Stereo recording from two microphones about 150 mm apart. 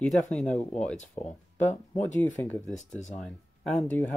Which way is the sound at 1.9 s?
10° left (ahead or behind).